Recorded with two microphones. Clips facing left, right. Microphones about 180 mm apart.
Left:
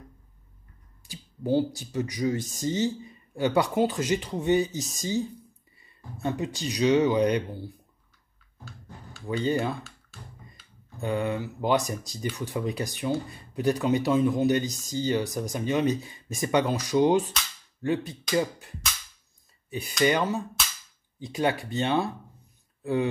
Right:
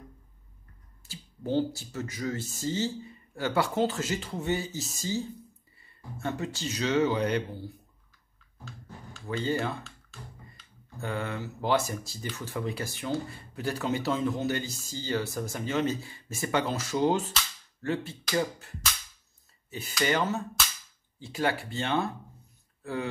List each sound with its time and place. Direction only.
1.0 s speech: 15° left (ahead or behind)
9.3 s speech: 15° left (ahead or behind)
11.0 s speech: 15° left (ahead or behind)
20.0 s speech: 15° left (ahead or behind)